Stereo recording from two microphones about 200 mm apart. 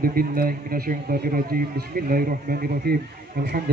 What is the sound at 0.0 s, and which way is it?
A man's voice, 45° right (ahead or behind).